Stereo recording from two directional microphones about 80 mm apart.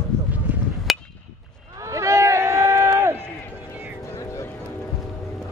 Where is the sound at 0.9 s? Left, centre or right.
Centre.